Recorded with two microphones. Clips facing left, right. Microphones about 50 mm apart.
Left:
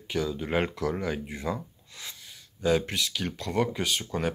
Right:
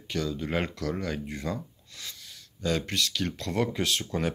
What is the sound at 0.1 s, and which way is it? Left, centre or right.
Speech, centre.